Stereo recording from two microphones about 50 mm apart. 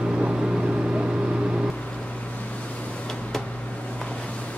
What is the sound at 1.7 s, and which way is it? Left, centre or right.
Vehicle, left.